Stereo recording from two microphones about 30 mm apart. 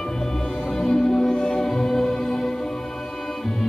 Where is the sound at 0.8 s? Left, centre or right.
Centre.